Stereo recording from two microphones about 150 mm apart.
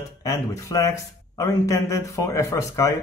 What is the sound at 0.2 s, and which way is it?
Speech, 20° left (ahead or behind).